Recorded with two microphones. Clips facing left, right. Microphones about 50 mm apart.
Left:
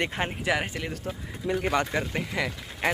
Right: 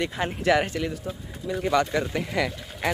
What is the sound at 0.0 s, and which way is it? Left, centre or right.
Speech, left.